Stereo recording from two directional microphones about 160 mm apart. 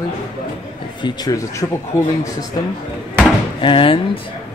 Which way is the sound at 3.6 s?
35° left (ahead or behind).